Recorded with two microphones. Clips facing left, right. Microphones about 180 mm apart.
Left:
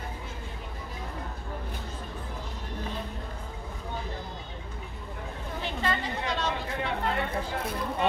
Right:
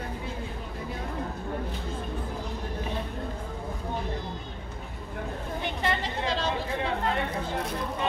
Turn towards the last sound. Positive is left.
turn(degrees=-30)  # may be behind; listen again after turning